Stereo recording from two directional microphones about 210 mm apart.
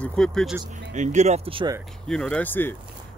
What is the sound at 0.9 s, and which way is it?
Speech, 35° right (ahead or behind).